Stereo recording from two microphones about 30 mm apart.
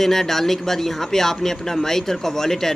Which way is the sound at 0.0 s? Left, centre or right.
Centre.